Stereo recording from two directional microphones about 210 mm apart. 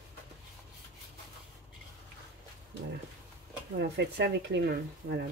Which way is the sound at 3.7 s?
55° right (ahead or behind).